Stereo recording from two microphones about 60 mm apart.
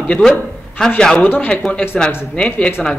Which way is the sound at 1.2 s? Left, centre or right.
Left.